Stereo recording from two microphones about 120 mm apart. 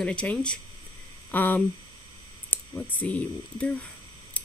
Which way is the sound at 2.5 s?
15° left (ahead or behind).